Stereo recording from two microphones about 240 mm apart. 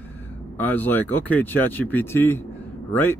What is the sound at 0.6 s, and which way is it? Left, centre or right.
Speech, centre.